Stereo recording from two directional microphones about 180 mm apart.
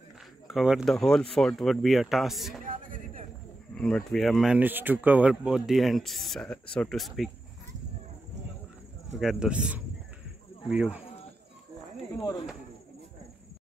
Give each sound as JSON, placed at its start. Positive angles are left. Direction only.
{"t": 0.5, "sound": "speech", "side_deg": -5}
{"t": 2.6, "sound": "a sound", "side_deg": -50}
{"t": 3.7, "sound": "speech", "side_deg": 5}
{"t": 9.2, "sound": "speech", "side_deg": -5}